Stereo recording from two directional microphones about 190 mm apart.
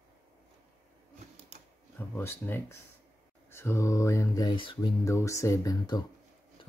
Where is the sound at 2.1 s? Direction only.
10° left (ahead or behind).